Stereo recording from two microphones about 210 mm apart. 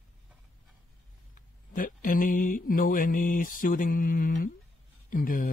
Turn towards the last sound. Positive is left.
turn(degrees=40)  # may be behind; listen again after turning